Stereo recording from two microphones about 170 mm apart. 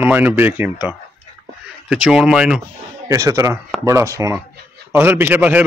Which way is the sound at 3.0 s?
20° right (ahead or behind).